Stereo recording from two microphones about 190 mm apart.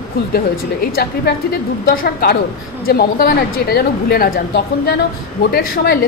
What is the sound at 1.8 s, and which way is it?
A woman's voice, 55° left (ahead or behind).